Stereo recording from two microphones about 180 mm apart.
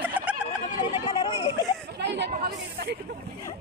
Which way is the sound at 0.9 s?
25° left (ahead or behind).